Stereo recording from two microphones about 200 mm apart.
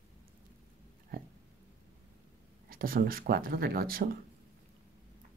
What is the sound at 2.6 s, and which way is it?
Speech, 45° right (ahead or behind).